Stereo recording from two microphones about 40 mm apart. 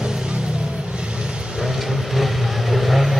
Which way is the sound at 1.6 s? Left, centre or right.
Centre.